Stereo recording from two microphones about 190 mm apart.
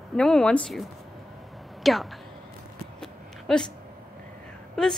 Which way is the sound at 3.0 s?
5° left (ahead or behind).